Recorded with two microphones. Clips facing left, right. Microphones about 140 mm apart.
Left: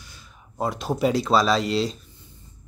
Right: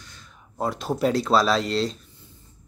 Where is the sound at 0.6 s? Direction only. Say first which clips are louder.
Left 1 dB; centre (ahead or behind).